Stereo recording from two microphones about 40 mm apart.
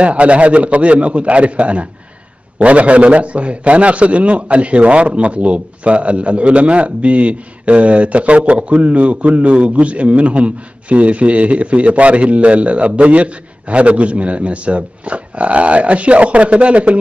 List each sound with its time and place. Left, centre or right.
0.0 s a man's voice: right